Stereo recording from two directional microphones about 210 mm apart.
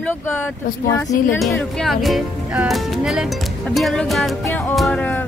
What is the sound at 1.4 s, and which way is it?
Speech, centre (ahead or behind).